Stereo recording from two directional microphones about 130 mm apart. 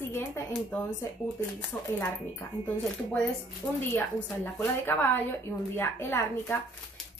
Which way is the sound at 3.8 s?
15° left (ahead or behind).